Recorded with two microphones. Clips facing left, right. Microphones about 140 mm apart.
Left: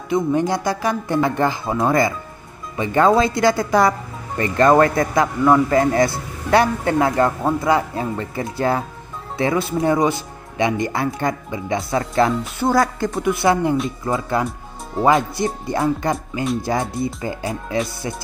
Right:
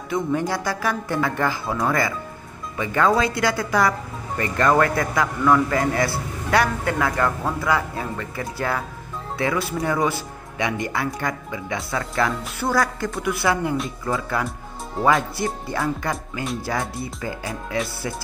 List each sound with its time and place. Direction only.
0.1 s a man's voice: 20° left (ahead or behind)